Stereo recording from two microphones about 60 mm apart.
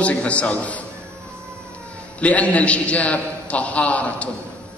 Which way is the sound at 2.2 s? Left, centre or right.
Left.